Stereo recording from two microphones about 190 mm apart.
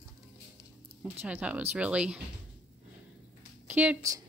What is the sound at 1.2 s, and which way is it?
Speech, 5° right (ahead or behind).